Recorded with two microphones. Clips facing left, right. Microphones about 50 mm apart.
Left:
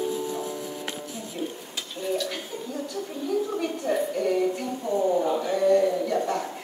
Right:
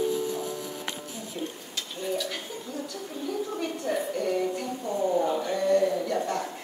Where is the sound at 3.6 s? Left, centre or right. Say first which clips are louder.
Left 3 dB; centre.